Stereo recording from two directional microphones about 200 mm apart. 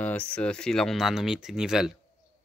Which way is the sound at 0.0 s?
10° left (ahead or behind).